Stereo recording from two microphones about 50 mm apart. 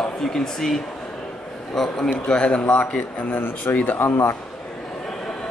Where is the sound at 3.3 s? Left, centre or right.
Left.